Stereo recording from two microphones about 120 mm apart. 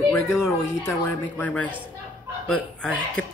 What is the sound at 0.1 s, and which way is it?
Speech, 20° left (ahead or behind).